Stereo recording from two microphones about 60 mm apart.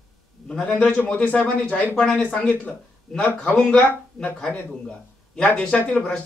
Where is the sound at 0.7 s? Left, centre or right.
Left.